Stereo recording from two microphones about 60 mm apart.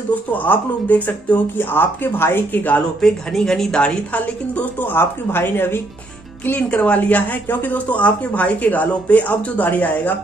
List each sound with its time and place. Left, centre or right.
0.1 s speech: left
3.0 s speech: centre
4.9 s speech: left
6.4 s speech: left